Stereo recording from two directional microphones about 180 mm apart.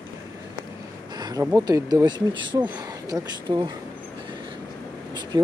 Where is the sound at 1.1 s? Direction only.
20° right (ahead or behind).